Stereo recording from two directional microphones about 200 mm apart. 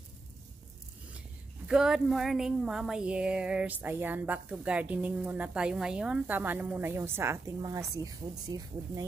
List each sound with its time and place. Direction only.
1.7 s a woman's voice: 5° right (ahead or behind); by 9.0 s 20° right (ahead or behind)